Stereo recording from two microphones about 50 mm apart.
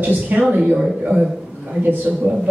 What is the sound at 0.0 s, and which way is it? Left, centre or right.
Speech, right.